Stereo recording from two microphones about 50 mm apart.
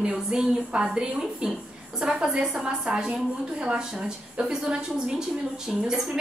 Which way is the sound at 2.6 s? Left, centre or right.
Centre.